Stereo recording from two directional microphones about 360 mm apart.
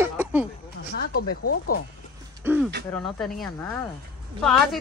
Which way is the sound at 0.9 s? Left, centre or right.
Left.